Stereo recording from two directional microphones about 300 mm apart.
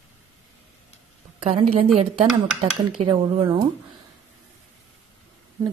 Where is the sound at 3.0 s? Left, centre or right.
Centre.